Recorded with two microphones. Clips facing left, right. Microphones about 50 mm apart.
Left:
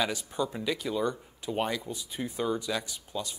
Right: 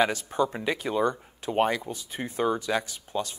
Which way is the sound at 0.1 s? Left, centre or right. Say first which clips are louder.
Right 5 dB; right.